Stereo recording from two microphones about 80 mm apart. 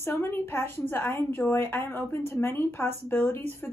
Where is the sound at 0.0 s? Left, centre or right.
Left.